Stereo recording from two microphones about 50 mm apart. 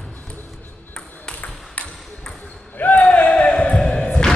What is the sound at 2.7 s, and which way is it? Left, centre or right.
Basketball bounce, left.